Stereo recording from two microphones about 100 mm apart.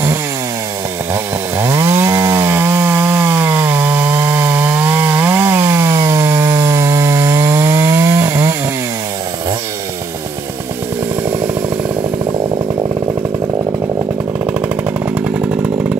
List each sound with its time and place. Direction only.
1.1 s chainsaw: 25° right (ahead or behind)
15.1 s chainsaw: 15° right (ahead or behind)